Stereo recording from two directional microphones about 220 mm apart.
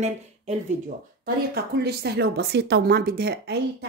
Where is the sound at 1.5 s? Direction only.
45° right (ahead or behind).